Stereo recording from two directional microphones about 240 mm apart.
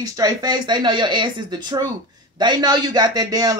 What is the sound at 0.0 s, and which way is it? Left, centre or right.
Speech, centre.